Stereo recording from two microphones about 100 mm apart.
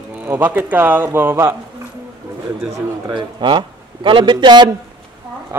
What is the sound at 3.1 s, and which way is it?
A man's voice, 50° right (ahead or behind).